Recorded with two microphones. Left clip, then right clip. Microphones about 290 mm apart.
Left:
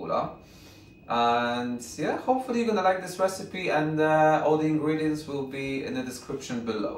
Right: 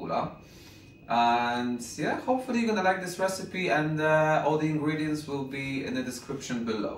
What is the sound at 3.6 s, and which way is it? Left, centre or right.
Speech, centre.